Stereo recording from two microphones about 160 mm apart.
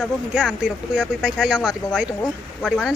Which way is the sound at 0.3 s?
5° right (ahead or behind).